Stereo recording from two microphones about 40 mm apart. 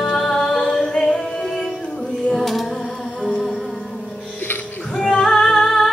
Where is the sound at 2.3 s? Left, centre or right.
Centre.